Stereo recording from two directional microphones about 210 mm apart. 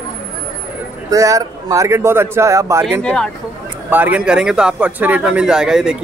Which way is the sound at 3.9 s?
10° right (ahead or behind).